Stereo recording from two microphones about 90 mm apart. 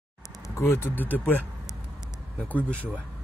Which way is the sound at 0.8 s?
20° left (ahead or behind).